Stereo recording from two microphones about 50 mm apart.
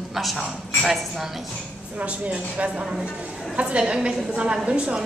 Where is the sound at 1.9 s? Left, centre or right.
Right.